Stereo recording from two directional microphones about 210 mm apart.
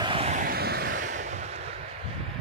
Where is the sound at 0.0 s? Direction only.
25° right (ahead or behind).